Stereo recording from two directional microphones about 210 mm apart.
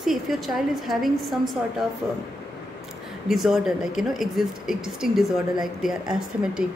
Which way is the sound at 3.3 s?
Centre (ahead or behind).